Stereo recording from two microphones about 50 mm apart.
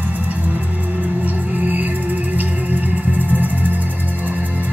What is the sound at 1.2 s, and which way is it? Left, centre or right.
Music, right.